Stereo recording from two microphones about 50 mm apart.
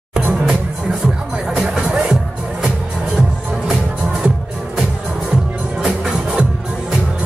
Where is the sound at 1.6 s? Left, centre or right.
Centre.